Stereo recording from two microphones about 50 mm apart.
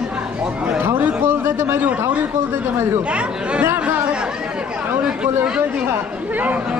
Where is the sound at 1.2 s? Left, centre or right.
Right.